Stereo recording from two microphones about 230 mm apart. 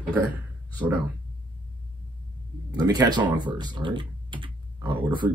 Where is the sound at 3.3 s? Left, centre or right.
Centre.